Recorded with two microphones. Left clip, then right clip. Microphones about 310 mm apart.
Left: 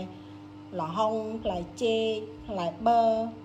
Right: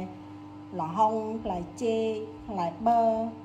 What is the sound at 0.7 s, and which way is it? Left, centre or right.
Speech, centre.